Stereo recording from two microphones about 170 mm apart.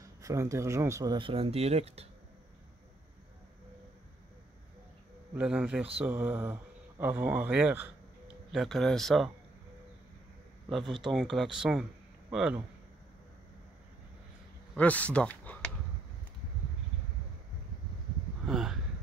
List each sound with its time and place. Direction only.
0.0 s speech: 20° right (ahead or behind); by 2.0 s 40° right (ahead or behind)
5.3 s speech: 5° right (ahead or behind)
10.7 s speech: centre (ahead or behind)
14.8 s speech: 10° left (ahead or behind)
18.5 s a sound: 5° right (ahead or behind)